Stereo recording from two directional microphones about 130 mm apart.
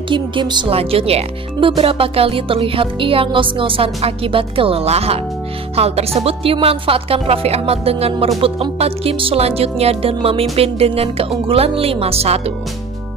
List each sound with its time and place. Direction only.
0.1 s music: 40° right (ahead or behind)